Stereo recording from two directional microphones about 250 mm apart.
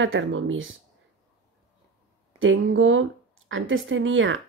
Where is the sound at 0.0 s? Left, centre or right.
Right.